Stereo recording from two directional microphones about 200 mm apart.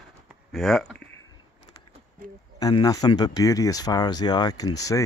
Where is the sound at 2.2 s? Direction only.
45° right (ahead or behind).